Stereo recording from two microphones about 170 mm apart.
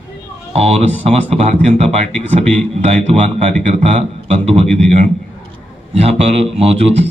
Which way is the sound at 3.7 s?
35° right (ahead or behind).